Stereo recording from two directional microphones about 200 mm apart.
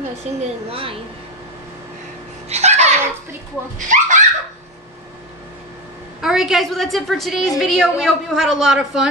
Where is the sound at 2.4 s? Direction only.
35° right (ahead or behind).